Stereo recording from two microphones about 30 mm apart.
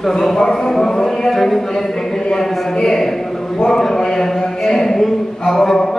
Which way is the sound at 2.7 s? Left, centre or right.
Left.